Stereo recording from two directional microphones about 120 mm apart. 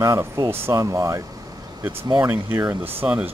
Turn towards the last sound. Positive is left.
turn(degrees=-15)  # may be behind; listen again after turning